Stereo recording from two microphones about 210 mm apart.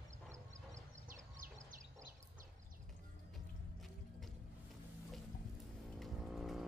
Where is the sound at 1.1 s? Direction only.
40° right (ahead or behind).